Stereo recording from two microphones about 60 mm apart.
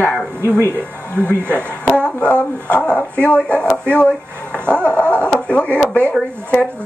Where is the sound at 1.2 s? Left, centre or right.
Left.